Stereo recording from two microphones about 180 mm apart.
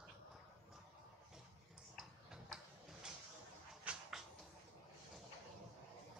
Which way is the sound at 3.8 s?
5° right (ahead or behind).